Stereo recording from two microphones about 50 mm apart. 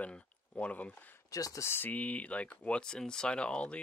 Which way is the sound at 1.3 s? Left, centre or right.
Left.